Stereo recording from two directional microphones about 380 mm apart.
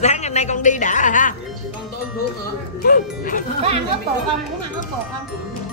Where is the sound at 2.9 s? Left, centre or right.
Left.